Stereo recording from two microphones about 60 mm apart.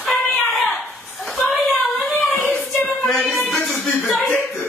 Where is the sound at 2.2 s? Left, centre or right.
Left.